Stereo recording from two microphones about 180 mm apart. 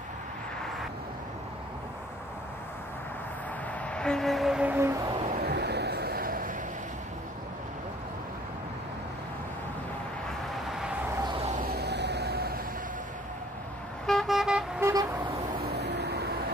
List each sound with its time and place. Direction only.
3.9 s a sound: 5° left (ahead or behind); by 5.1 s 15° right (ahead or behind)
5.4 s a sound: 70° right (ahead or behind); by 6.5 s 55° right (ahead or behind)
11.4 s vehicle: 50° right (ahead or behind)
14.0 s vehicle: centre (ahead or behind)
14.8 s vehicle: 15° right (ahead or behind)
15.6 s vehicle: 65° right (ahead or behind)